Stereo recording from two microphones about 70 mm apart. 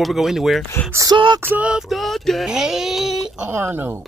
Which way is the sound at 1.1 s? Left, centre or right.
Right.